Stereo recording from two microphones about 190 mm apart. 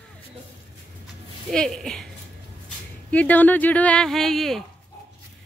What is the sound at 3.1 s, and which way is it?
Speech, 10° left (ahead or behind).